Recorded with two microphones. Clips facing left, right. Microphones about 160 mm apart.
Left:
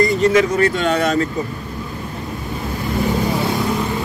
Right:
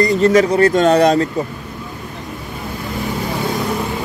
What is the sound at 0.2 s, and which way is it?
Speech, 35° right (ahead or behind).